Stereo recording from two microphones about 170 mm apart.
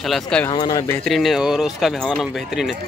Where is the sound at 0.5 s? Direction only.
25° left (ahead or behind).